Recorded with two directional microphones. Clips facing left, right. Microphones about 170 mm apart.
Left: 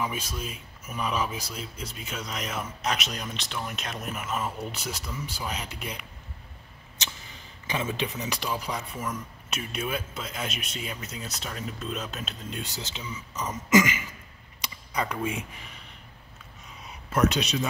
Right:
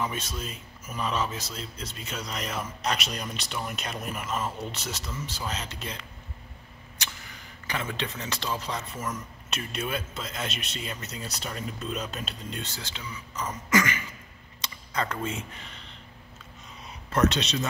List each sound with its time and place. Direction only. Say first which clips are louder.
0.0 s speech: even; 5° left (ahead or behind)
7.0 s speech: left 1 dB; 20° left (ahead or behind); by 12.6 s 5° left (ahead or behind)
12.6 s throat clearing: left 2 dB; 20° left (ahead or behind)
14.6 s a sound: even; 10° left (ahead or behind)
17.1 s speech: even; 10° left (ahead or behind)